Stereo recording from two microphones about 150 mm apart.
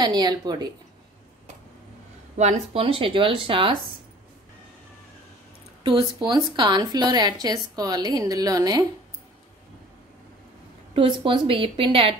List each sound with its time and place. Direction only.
0.0 s a woman's voice: 30° right (ahead or behind)
2.3 s speech: 50° right (ahead or behind)
6.1 s a woman's voice: 30° right (ahead or behind)
11.0 s speech: 35° right (ahead or behind)